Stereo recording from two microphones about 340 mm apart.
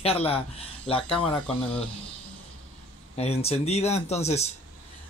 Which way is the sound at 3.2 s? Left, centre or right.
Centre.